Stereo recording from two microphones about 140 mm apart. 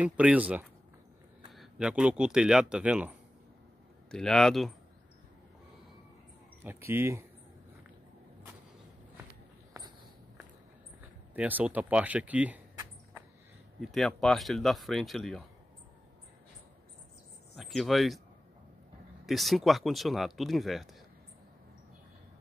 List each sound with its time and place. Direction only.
0.0 s speech: 10° right (ahead or behind)
4.1 s speech: 5° left (ahead or behind)
6.9 s speech: 15° right (ahead or behind)
11.3 s speech: 10° right (ahead or behind)
13.7 s speech: centre (ahead or behind)
17.6 s speech: centre (ahead or behind)
19.2 s speech: centre (ahead or behind)